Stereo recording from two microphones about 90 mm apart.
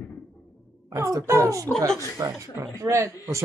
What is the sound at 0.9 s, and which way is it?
A child's voice, 35° right (ahead or behind).